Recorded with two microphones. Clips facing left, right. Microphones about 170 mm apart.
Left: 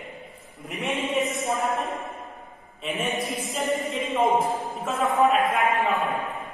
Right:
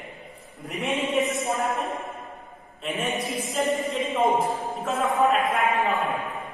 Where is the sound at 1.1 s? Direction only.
Centre (ahead or behind).